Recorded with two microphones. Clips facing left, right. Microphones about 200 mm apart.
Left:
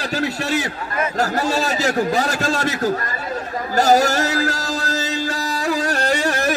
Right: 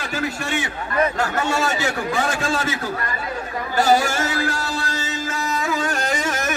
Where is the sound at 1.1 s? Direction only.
35° left (ahead or behind).